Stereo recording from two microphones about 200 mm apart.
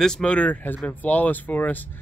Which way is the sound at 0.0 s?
5° left (ahead or behind).